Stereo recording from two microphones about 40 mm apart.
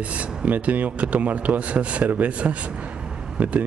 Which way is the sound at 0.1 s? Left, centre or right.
Right.